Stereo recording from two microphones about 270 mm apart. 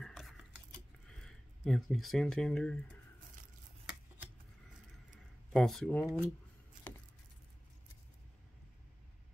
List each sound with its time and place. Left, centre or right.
0.0 s scissors: centre
1.0 s speech: centre
5.5 s speech: centre